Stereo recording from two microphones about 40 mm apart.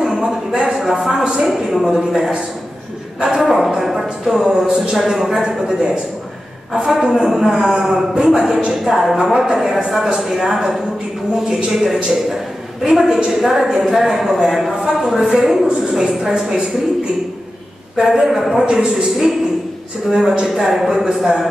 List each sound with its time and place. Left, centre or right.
0.0 s a sound: centre
0.7 s a woman's voice: centre
1.3 s a man's voice: centre
3.3 s a man's voice: centre
8.7 s a woman's voice: centre
17.9 s a woman's voice: centre
18.7 s speech: centre
19.0 s a woman's voice: centre